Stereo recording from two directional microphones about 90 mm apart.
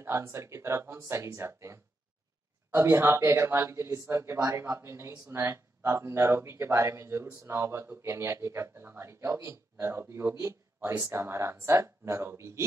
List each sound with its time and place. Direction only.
0.0 s speech: 30° right (ahead or behind)